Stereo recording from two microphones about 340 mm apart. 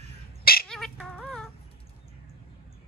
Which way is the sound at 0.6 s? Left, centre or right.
Centre.